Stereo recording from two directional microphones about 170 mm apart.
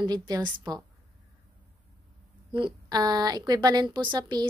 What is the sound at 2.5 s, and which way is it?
A woman's voice, 25° right (ahead or behind).